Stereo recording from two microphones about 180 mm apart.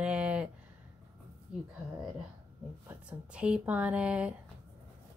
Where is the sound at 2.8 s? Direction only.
5° right (ahead or behind).